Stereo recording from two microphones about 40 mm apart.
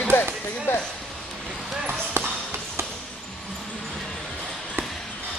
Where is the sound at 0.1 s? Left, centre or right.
Left.